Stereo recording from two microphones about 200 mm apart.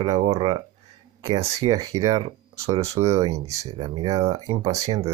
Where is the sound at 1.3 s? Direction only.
20° right (ahead or behind).